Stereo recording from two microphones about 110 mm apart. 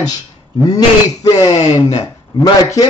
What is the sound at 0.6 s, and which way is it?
Speech, 35° left (ahead or behind).